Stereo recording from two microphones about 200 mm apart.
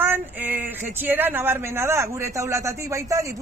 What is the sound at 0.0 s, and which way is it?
Speech, 10° right (ahead or behind).